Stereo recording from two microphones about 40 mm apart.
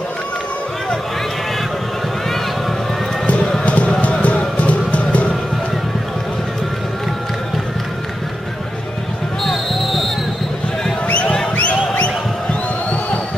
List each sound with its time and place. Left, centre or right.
3.6 s clip-clop: left
4.0 s a sound: left
9.4 s basketball bounce: centre
11.6 s music: left